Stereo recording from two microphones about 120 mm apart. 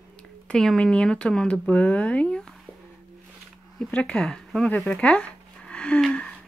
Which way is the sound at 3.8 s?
10° left (ahead or behind).